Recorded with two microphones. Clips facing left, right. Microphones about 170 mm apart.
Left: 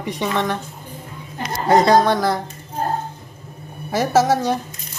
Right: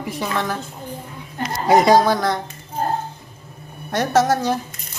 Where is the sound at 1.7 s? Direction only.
10° right (ahead or behind).